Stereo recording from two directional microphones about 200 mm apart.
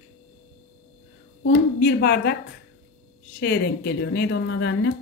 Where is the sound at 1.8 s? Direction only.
55° left (ahead or behind).